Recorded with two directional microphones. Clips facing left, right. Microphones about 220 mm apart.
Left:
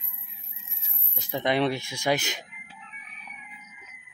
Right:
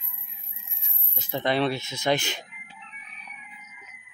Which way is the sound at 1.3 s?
15° left (ahead or behind).